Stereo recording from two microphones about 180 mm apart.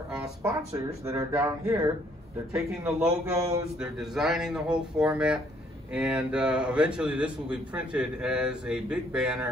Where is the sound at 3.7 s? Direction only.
Centre (ahead or behind).